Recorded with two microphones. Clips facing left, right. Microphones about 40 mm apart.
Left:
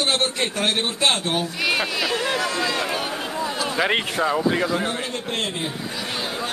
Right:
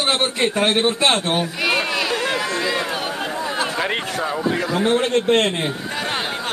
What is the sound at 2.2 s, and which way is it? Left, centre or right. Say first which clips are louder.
Run: right 1 dB; centre.